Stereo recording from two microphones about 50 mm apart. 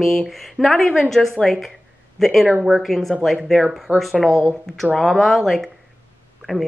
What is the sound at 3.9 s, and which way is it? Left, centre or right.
Speech, right.